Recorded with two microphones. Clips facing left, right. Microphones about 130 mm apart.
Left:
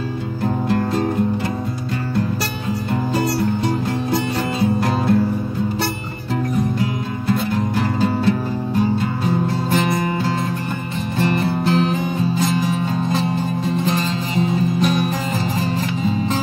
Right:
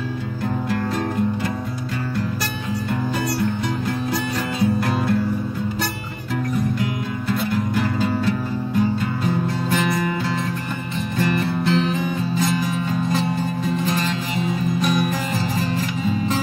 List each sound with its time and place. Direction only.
0.7 s music: 30° left (ahead or behind)
3.2 s music: 25° left (ahead or behind)
6.8 s music: 30° left (ahead or behind)
9.7 s music: 30° left (ahead or behind)